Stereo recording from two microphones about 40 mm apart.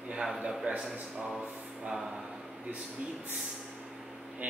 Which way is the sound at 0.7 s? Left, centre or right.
Right.